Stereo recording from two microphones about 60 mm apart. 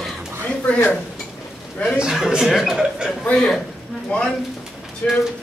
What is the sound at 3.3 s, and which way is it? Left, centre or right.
Speech, centre.